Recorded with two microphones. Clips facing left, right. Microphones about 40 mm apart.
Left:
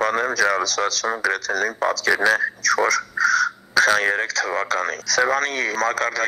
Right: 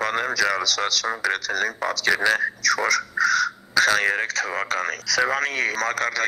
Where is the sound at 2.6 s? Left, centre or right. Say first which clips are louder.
Left 3 dB; left.